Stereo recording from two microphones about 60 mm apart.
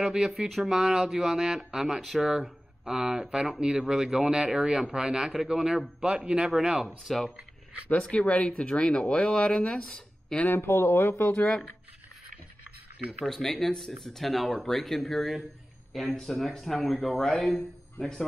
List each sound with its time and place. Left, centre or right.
0.0 s speech: centre
6.0 s speech: centre
7.9 s speech: centre
10.5 s speech: left
11.3 s speech: centre
13.2 s speech: centre